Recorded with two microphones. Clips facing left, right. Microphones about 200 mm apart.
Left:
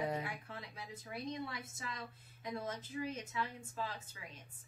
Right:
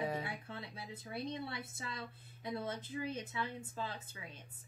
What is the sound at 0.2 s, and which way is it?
Speech, 25° right (ahead or behind).